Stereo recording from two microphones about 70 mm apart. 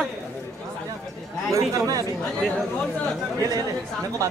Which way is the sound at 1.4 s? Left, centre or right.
Right.